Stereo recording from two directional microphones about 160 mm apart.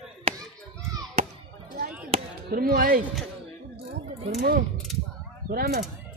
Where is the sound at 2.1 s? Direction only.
40° right (ahead or behind).